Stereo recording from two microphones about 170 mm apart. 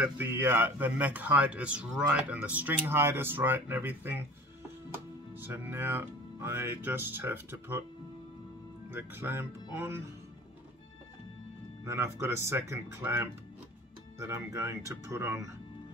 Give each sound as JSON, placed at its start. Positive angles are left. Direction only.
{"t": 0.0, "sound": "a man's voice", "side_deg": -10}
{"t": 5.3, "sound": "a man's voice", "side_deg": -10}
{"t": 8.9, "sound": "a man's voice", "side_deg": -10}
{"t": 11.8, "sound": "a man's voice", "side_deg": -15}